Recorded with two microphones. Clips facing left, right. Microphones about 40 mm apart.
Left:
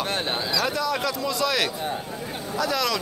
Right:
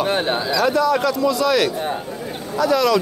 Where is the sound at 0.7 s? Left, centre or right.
Centre.